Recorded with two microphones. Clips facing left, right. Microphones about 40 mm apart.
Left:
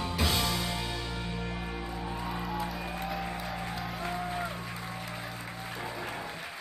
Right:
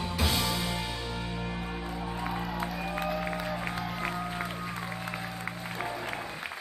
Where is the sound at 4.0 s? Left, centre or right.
Right.